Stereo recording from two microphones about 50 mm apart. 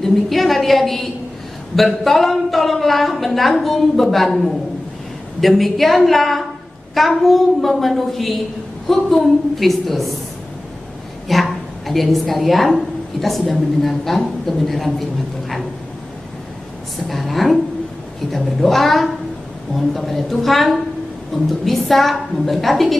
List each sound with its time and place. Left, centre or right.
0.0 s a woman's voice: centre
11.2 s a woman's voice: centre
17.1 s a woman's voice: centre